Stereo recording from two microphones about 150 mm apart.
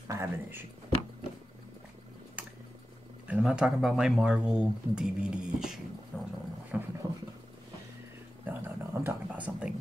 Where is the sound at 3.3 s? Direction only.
5° right (ahead or behind).